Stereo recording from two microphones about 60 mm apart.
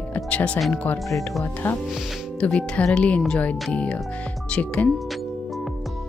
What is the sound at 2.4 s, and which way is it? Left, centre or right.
Speech, centre.